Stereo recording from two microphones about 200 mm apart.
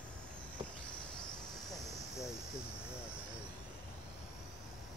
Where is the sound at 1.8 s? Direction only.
15° left (ahead or behind).